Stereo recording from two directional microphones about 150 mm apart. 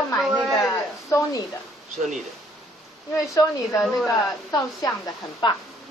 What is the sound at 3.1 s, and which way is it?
A woman's voice, 25° left (ahead or behind).